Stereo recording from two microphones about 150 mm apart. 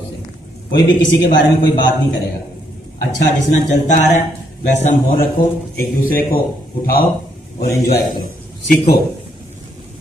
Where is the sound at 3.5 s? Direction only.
55° left (ahead or behind).